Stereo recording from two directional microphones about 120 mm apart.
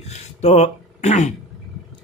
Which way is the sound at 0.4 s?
65° left (ahead or behind).